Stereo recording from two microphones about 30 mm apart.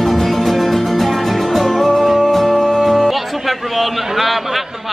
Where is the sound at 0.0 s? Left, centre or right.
Centre.